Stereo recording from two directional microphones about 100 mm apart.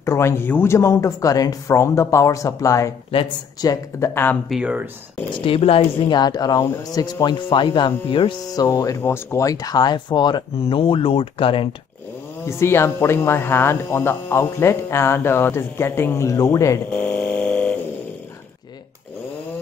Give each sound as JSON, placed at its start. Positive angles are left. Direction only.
{"t": 0.0, "sound": "speech", "side_deg": 30}
{"t": 3.1, "sound": "speech", "side_deg": 65}
{"t": 3.6, "sound": "speech", "side_deg": 40}
{"t": 4.1, "sound": "speech", "side_deg": 20}
{"t": 4.5, "sound": "speech", "side_deg": -5}
{"t": 5.3, "sound": "speech", "side_deg": 65}
{"t": 6.0, "sound": "speech", "side_deg": 45}
{"t": 8.5, "sound": "speech", "side_deg": 35}
{"t": 9.0, "sound": "speech", "side_deg": 25}
{"t": 10.6, "sound": "speech", "side_deg": 65}
{"t": 12.4, "sound": "speech", "side_deg": 25}
{"t": 16.9, "sound": "a sound", "side_deg": 15}